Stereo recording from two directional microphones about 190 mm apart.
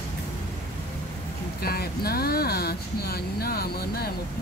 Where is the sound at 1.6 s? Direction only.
55° left (ahead or behind).